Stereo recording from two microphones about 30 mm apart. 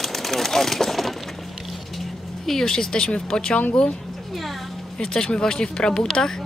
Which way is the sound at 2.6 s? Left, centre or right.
Left.